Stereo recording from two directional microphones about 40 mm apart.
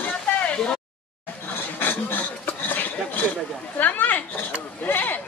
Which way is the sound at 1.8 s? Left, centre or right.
Left.